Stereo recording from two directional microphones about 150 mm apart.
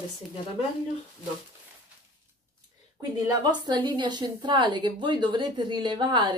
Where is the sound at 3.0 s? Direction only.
25° right (ahead or behind).